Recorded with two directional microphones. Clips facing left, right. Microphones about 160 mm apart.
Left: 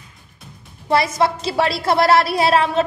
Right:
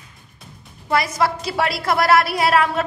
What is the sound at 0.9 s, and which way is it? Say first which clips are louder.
A woman's voice: left 2 dB; 25° left (ahead or behind).